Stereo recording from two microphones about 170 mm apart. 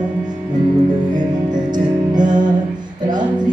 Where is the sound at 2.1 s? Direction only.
25° right (ahead or behind).